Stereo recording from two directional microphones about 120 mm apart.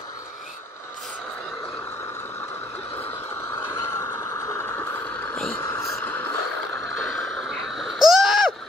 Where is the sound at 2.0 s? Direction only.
20° left (ahead or behind).